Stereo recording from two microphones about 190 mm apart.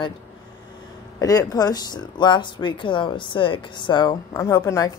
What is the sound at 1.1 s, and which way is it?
A woman's voice, 20° left (ahead or behind).